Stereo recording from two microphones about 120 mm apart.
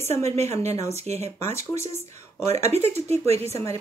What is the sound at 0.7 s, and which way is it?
Speech, 25° left (ahead or behind).